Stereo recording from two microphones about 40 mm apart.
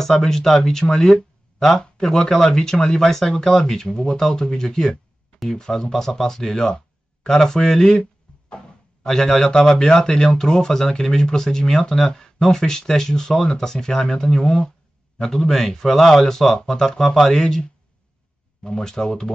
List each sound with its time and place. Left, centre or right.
0.0 s speech: centre
7.2 s a sound: centre
9.1 s speech: centre